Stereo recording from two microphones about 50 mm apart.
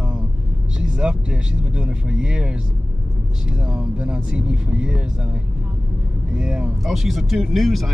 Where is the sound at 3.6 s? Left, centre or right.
Centre.